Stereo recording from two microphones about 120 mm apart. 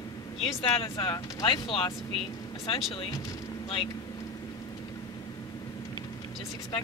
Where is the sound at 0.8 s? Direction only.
40° left (ahead or behind).